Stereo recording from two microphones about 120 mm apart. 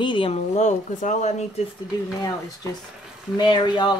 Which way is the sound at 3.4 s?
40° left (ahead or behind).